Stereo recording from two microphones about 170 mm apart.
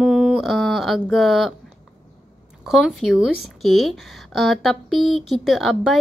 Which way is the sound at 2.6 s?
Centre (ahead or behind).